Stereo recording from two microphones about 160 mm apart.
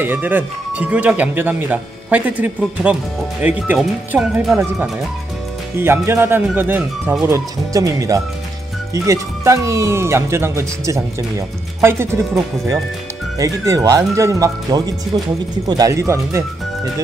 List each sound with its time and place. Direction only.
0.0 s speech: 10° right (ahead or behind)
5.8 s speech: 15° right (ahead or behind)